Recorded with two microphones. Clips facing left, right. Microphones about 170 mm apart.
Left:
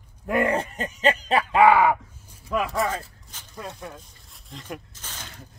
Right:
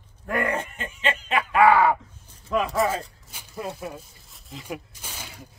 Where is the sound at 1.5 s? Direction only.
20° left (ahead or behind).